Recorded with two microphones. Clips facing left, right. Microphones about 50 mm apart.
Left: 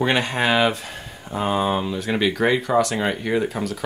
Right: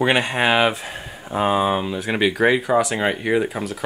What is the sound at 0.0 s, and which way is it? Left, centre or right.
Speech, centre.